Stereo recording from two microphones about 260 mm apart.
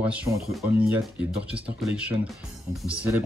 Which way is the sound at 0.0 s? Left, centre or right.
Centre.